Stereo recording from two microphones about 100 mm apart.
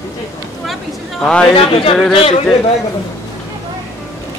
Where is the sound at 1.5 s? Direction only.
65° left (ahead or behind).